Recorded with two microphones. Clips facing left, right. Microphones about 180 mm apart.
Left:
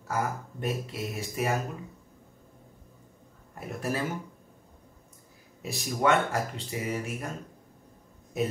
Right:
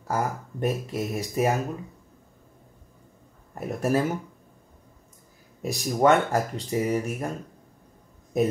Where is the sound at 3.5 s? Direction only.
45° right (ahead or behind).